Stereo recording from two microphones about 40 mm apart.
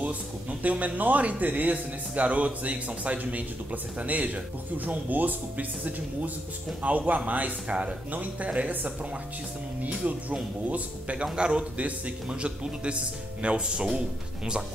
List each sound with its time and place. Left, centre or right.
0.0 s speech: right
8.1 s speech: right
10.0 s a man's voice: right; by 14.6 s centre